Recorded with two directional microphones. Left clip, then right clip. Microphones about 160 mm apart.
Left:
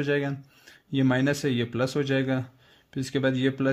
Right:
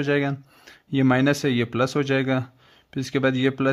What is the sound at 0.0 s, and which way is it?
Speech, 25° right (ahead or behind).